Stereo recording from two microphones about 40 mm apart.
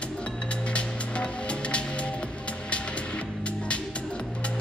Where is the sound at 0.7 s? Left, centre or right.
Left.